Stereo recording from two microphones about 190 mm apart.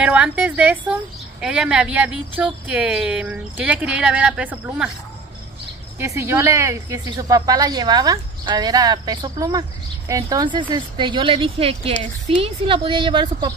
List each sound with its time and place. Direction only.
0.0 s speech: 5° right (ahead or behind)
5.9 s speech: 15° right (ahead or behind)